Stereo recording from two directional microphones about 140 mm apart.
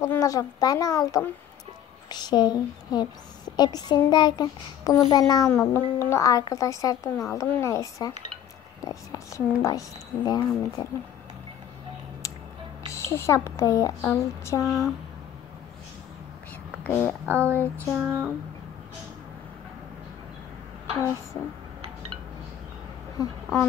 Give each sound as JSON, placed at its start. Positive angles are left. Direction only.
{"t": 0.0, "sound": "speech", "side_deg": 25}
{"t": 12.9, "sound": "a child's voice", "side_deg": 20}
{"t": 14.6, "sound": "speech", "side_deg": 0}
{"t": 16.8, "sound": "speech", "side_deg": 10}
{"t": 17.3, "sound": "speech", "side_deg": -15}
{"t": 23.2, "sound": "speech", "side_deg": 25}